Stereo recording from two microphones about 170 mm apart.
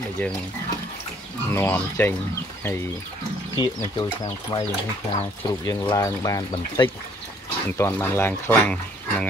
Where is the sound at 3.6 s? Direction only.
20° left (ahead or behind).